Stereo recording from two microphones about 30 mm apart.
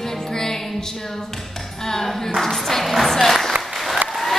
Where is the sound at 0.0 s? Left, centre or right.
Centre.